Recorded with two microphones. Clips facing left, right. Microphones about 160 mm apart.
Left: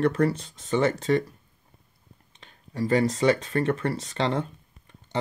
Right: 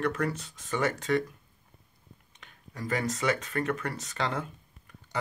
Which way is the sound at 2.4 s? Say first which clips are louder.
Left 11 dB; 30° left (ahead or behind).